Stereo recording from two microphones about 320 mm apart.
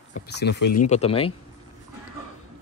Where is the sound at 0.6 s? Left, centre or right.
Left.